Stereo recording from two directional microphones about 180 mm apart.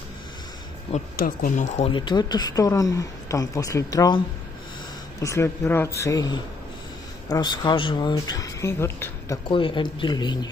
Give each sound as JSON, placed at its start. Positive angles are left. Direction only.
{"t": 0.9, "sound": "speech", "side_deg": 50}
{"t": 1.9, "sound": "speech", "side_deg": 25}
{"t": 5.2, "sound": "speech", "side_deg": 15}
{"t": 9.5, "sound": "speech", "side_deg": 30}